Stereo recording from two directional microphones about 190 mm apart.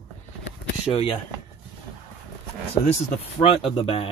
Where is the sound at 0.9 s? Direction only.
30° left (ahead or behind).